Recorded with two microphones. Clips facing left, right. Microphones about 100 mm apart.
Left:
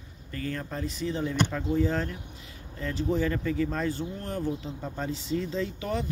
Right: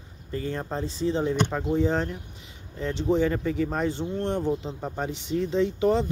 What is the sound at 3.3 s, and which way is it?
Speech, 15° right (ahead or behind).